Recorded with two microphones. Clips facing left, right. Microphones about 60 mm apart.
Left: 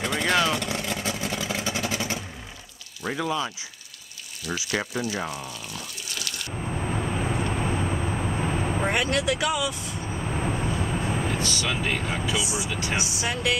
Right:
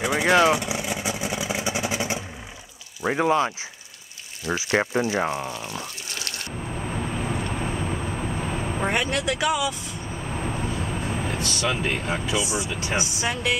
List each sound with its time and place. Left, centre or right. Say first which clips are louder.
0.0 s vehicle: right 5 dB; centre
3.2 s speech: right 7 dB; right
6.9 s vehicle: even; centre
11.4 s speech: right 2 dB; right
12.4 s speech: right 2 dB; centre